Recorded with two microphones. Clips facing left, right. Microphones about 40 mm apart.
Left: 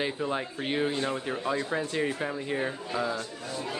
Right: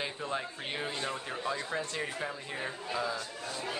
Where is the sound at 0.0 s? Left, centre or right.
Centre.